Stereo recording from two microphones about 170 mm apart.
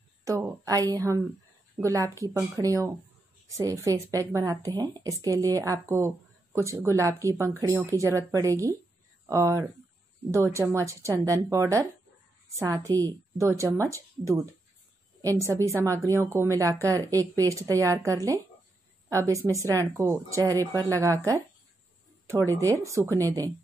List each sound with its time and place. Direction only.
0.2 s a woman's voice: 15° right (ahead or behind)